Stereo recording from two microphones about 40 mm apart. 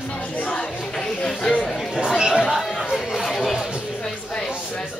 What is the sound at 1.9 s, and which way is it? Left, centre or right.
Chatter, centre.